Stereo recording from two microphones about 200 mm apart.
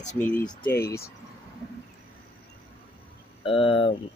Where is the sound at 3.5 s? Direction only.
25° left (ahead or behind).